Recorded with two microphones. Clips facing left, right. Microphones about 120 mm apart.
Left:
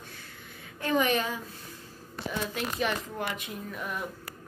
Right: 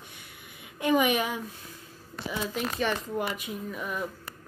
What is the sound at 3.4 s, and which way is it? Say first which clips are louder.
Speech: right 2 dB; centre (ahead or behind).